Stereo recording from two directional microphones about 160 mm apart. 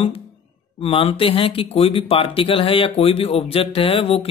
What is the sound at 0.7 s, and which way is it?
Speech, 35° left (ahead or behind).